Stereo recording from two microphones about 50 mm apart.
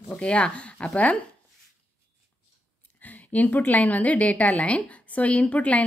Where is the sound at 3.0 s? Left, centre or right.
Left.